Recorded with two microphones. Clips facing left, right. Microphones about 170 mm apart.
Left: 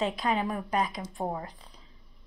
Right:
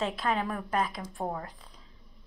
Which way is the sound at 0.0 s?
15° left (ahead or behind).